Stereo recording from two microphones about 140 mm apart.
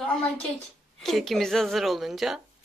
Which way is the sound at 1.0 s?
Centre (ahead or behind).